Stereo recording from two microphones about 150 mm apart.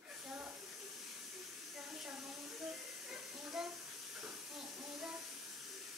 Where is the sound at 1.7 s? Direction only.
Centre (ahead or behind).